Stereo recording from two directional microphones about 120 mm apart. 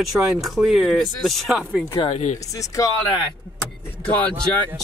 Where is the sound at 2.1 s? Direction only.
80° left.